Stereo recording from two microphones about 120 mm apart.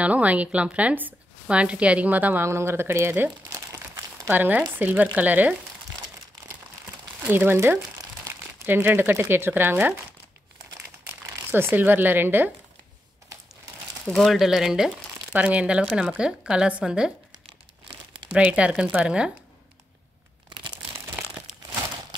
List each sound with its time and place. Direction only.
0.0 s a woman's voice: 10° right (ahead or behind); by 4.3 s 30° right (ahead or behind)
4.3 s speech: 15° right (ahead or behind)
7.2 s speech: 20° right (ahead or behind)
11.5 s speech: 15° right (ahead or behind)
14.0 s speech: 5° left (ahead or behind)
18.3 s speech: 10° right (ahead or behind)